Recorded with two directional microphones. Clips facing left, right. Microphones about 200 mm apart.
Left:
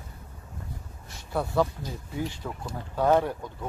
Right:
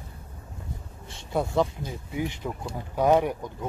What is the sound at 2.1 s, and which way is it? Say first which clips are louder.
Speech: right 3 dB; 20° right (ahead or behind).